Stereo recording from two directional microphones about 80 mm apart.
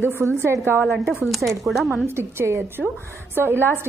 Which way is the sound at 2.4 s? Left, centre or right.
Right.